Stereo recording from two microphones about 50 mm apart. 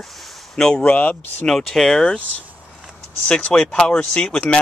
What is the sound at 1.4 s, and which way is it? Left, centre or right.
Speech, centre.